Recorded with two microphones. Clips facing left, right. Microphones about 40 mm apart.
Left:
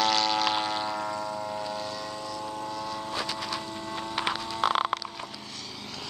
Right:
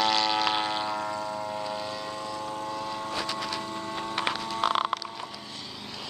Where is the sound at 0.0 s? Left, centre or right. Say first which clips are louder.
Even; centre.